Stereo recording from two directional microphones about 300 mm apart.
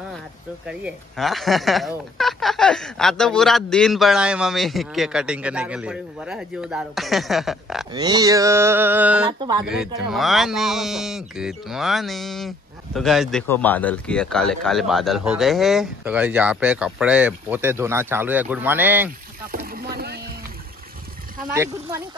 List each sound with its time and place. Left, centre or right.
0.7 s speech: centre
7.9 s mantra: centre
9.7 s speech: centre
19.5 s a sound: right
21.5 s mantra: centre